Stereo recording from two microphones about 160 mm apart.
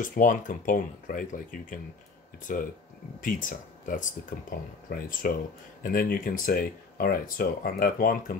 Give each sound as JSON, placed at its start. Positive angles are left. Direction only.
{"t": 0.0, "sound": "speech", "side_deg": 55}